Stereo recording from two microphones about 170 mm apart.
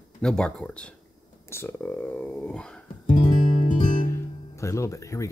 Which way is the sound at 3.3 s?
45° left (ahead or behind).